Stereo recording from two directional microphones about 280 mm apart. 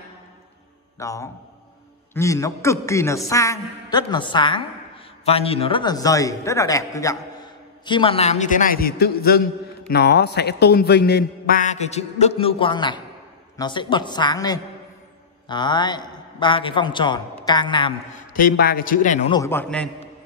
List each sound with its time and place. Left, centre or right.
0.9 s a man's voice: centre
18.3 s a man's voice: left
19.3 s a man's voice: centre